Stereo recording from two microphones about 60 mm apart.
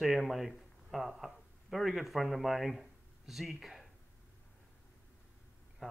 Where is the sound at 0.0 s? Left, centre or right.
Centre.